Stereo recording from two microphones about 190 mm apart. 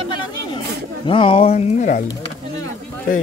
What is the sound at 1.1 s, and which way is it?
Speech, 30° left (ahead or behind).